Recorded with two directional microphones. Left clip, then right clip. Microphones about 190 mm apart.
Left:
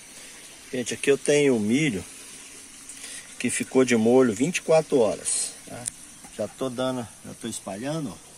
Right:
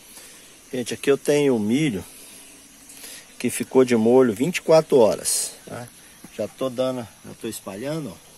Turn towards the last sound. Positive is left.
turn(degrees=-25)  # may be behind; listen again after turning